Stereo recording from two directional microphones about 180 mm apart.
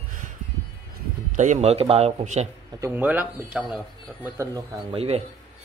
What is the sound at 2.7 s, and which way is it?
Speech, 15° right (ahead or behind).